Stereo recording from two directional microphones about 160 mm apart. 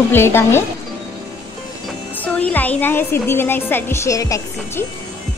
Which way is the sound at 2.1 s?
10° left (ahead or behind).